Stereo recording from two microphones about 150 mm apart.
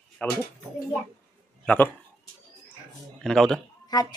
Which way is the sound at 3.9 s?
25° left (ahead or behind).